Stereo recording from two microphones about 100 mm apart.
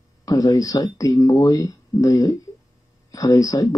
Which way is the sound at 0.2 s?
40° left (ahead or behind).